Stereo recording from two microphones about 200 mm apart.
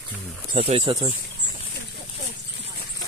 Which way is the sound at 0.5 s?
30° right (ahead or behind).